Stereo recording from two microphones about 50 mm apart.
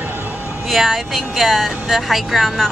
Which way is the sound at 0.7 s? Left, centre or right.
Centre.